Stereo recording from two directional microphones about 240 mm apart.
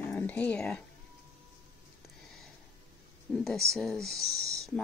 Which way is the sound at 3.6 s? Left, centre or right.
Centre.